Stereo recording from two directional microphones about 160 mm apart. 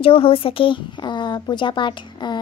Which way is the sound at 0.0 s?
35° left (ahead or behind).